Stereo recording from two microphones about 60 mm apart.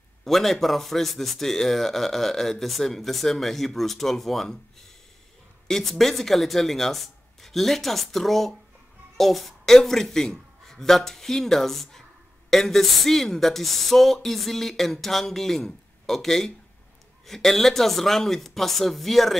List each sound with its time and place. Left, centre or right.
0.2 s a man's voice: centre